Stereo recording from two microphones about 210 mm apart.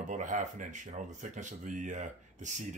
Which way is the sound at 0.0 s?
35° right (ahead or behind).